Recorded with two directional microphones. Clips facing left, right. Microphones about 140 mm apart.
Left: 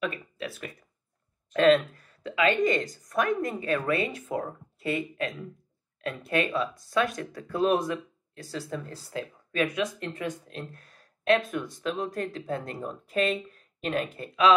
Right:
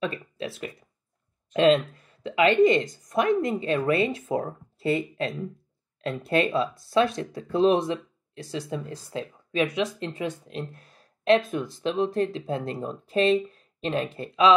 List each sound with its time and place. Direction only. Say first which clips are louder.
0.0 s speech: right 2 dB; 30° right (ahead or behind)